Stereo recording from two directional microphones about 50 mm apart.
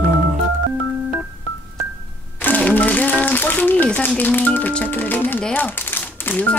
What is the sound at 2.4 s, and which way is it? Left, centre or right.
Music, left.